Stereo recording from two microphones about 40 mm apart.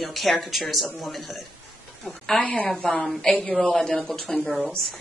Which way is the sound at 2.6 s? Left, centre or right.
Centre.